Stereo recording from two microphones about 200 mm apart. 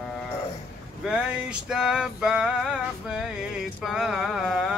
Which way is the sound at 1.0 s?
5° right (ahead or behind).